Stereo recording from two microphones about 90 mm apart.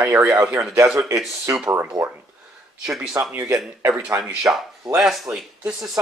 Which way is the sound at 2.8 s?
5° right (ahead or behind).